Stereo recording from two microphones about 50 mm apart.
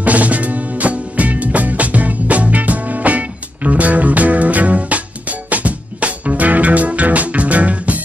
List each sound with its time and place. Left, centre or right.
0.0 s music: right